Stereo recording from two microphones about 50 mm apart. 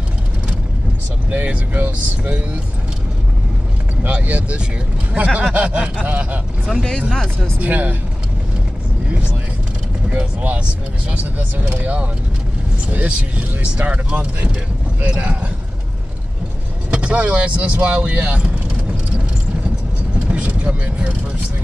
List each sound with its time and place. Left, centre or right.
1.3 s speech: right
4.0 s speech: right
7.6 s speech: right
10.1 s speech: right
16.9 s speech: right
20.2 s vehicle: right